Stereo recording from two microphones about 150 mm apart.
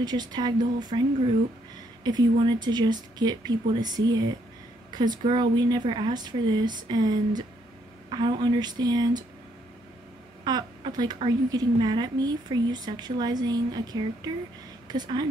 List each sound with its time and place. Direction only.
0.0 s speech: 30° right (ahead or behind)
2.0 s speech: 30° right (ahead or behind)
10.4 s a woman's voice: 30° right (ahead or behind)